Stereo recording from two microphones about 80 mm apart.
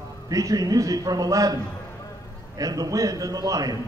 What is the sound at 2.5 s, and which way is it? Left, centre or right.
A man's voice, right.